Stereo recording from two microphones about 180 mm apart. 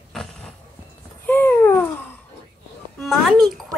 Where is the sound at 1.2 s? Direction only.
10° left (ahead or behind).